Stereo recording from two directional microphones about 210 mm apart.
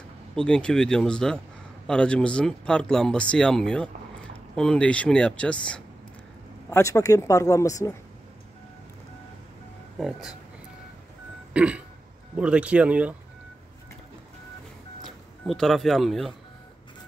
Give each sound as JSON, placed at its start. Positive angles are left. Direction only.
{"t": 0.5, "sound": "speech", "side_deg": 5}
{"t": 9.9, "sound": "speech", "side_deg": 0}
{"t": 11.5, "sound": "throat clearing", "side_deg": -5}
{"t": 12.4, "sound": "speech", "side_deg": -5}
{"t": 15.0, "sound": "speech", "side_deg": 0}